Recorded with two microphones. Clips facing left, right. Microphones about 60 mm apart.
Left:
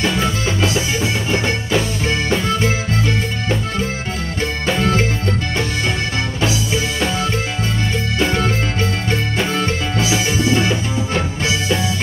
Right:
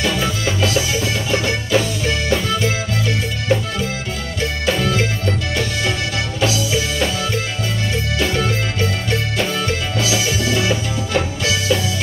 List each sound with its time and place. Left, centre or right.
0.0 s music: left
6.4 s music: left
8.2 s music: left